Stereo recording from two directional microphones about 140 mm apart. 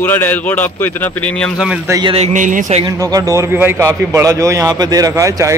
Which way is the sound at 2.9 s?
25° right (ahead or behind).